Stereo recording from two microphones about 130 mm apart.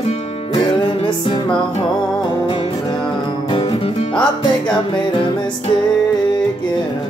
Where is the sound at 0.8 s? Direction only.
40° left (ahead or behind).